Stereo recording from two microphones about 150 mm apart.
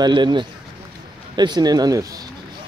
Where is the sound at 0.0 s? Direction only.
30° right (ahead or behind).